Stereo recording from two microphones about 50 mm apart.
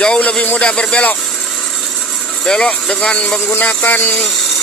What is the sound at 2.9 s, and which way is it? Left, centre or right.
Speech, left.